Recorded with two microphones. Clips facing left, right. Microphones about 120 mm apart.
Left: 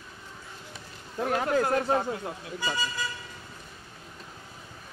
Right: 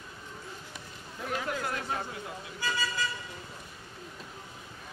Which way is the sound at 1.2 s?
50° left (ahead or behind).